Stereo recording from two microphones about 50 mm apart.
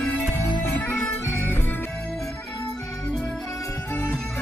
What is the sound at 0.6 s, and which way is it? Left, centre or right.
Music, left.